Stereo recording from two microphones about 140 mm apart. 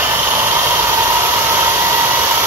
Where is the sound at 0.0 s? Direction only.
20° right (ahead or behind).